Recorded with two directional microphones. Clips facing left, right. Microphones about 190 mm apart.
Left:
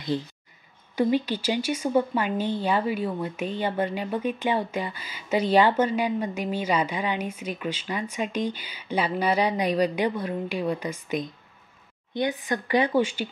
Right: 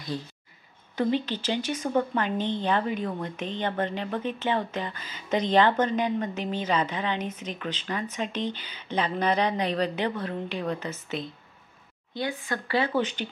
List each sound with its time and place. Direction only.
0.9 s a woman's voice: 10° left (ahead or behind)